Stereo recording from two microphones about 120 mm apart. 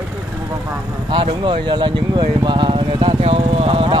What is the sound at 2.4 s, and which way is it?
Vehicle, 40° right (ahead or behind).